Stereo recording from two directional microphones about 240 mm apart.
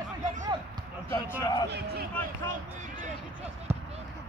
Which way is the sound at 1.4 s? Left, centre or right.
Centre.